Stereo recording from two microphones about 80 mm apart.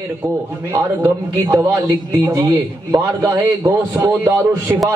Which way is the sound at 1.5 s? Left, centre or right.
Right.